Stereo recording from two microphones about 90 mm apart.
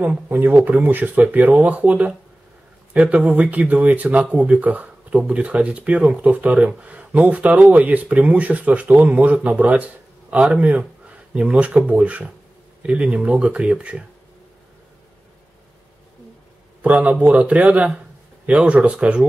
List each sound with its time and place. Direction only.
0.3 s speech: 20° right (ahead or behind)
16.8 s speech: 15° right (ahead or behind)